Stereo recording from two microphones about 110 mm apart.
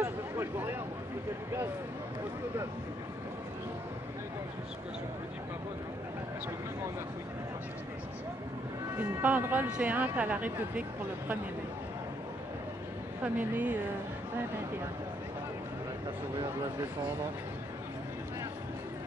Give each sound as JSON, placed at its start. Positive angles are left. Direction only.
{"t": 0.0, "sound": "a sound", "side_deg": -20}
{"t": 8.9, "sound": "speech", "side_deg": -15}
{"t": 13.2, "sound": "speech", "side_deg": -15}